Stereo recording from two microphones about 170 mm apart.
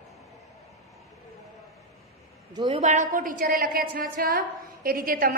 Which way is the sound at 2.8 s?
45° right (ahead or behind).